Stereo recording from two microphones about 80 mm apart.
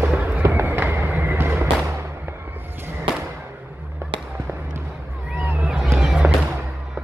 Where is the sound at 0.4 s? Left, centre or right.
Right.